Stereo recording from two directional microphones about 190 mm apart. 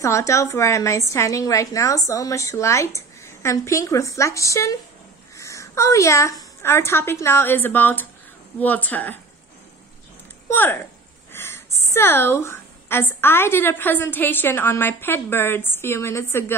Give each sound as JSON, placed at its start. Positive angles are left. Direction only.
{"t": 0.0, "sound": "a woman's voice", "side_deg": 15}
{"t": 10.5, "sound": "a woman's voice", "side_deg": 10}